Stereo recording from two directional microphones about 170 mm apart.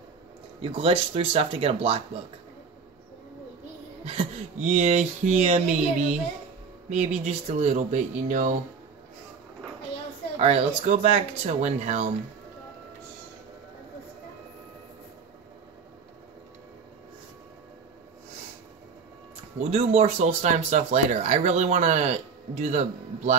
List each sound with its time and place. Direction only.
0.6 s speech: 30° right (ahead or behind)
4.0 s speech: 35° right (ahead or behind)
10.4 s speech: 40° right (ahead or behind)
19.6 s speech: 35° right (ahead or behind)